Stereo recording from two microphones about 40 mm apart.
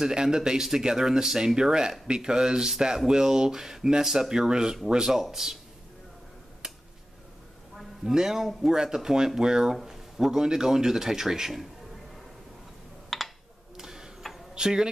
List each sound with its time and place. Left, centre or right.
0.0 s speech: centre
6.6 s a sound: centre
8.0 s speech: centre
13.1 s a sound: centre
13.7 s printer: centre
14.5 s speech: centre